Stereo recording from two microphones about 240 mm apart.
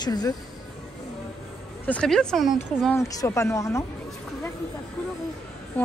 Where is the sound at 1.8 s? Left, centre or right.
Centre.